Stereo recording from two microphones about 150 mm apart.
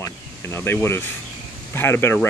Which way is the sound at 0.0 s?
20° left (ahead or behind).